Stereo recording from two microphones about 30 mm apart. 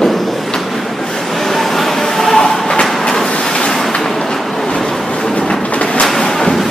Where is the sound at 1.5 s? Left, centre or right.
Centre.